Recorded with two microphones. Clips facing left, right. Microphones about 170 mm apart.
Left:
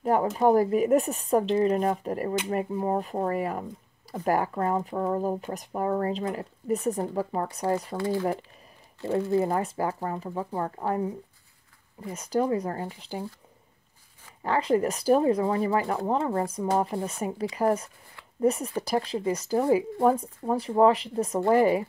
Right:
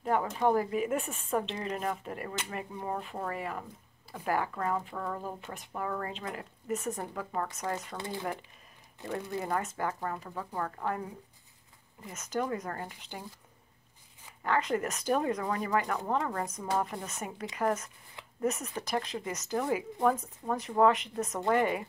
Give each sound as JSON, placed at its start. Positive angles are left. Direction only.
{"t": 0.0, "sound": "speech", "side_deg": 40}
{"t": 9.0, "sound": "speech", "side_deg": -20}
{"t": 9.5, "sound": "speech", "side_deg": 35}
{"t": 12.1, "sound": "speech", "side_deg": 35}
{"t": 14.4, "sound": "speech", "side_deg": 35}